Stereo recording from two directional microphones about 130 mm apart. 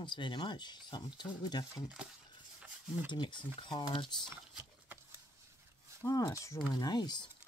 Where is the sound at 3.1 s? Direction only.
35° left (ahead or behind).